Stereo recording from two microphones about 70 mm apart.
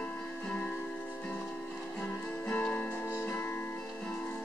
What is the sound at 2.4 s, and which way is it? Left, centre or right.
Music, centre.